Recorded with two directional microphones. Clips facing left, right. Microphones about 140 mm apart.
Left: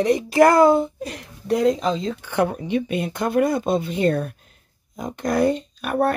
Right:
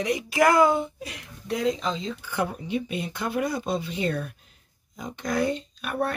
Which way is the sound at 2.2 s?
65° left (ahead or behind).